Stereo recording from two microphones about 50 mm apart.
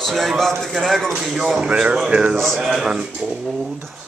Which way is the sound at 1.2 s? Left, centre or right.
Centre.